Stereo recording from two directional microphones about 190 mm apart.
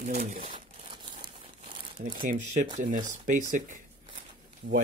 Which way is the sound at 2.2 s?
45° right (ahead or behind).